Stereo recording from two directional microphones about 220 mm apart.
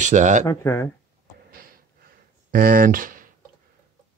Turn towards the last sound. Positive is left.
turn(degrees=-40)  # may be behind; listen again after turning